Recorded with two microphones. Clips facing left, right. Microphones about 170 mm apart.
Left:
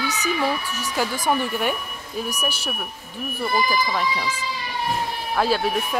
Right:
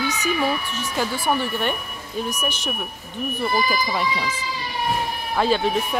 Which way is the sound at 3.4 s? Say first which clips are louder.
Left 1 dB; 10° right (ahead or behind).